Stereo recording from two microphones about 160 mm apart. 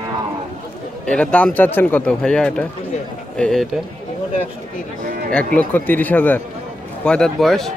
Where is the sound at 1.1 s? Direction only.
5° left (ahead or behind).